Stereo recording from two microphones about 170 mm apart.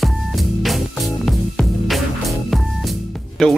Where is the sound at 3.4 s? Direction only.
Centre (ahead or behind).